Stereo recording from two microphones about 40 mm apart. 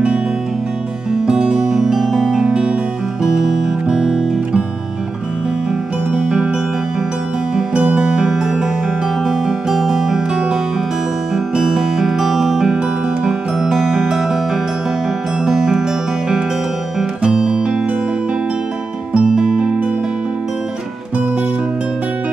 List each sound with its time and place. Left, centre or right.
1.2 s music: centre
3.2 s music: centre
6.2 s music: right
7.7 s music: right
12.7 s music: right
13.3 s music: centre
15.4 s music: centre
17.2 s music: centre
19.1 s music: centre